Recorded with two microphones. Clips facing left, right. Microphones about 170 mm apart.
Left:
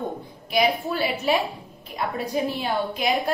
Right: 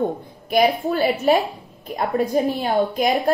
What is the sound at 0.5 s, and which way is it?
A woman's voice, 50° right (ahead or behind).